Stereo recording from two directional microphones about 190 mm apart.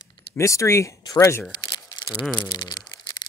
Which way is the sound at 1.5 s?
20° left (ahead or behind).